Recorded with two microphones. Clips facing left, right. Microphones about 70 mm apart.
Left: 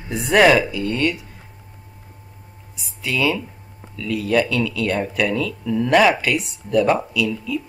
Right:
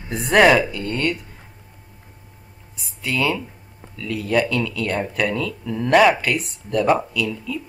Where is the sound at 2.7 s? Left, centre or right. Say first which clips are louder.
Even; centre.